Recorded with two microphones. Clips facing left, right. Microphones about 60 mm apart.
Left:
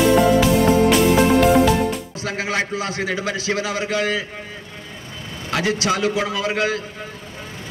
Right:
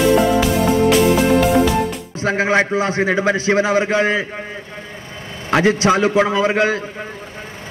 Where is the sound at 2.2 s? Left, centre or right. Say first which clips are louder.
Right 10 dB; right.